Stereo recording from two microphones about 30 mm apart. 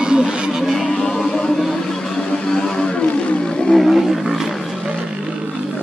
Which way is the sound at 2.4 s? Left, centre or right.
Left.